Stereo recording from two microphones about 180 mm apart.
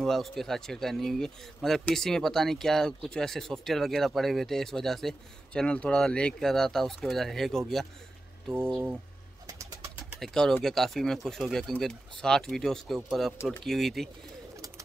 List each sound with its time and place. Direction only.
0.0 s speech: centre (ahead or behind)
8.7 s speech: 10° right (ahead or behind)
9.5 s bird: 20° right (ahead or behind)
10.0 s speech: centre (ahead or behind)